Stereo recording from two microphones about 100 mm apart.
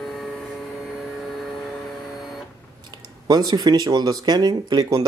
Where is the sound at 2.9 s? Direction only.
45° right (ahead or behind).